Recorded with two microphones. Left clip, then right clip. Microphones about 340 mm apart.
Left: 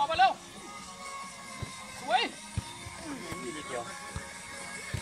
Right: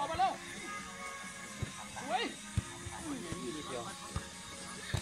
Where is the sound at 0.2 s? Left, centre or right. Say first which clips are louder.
Left 8 dB; left.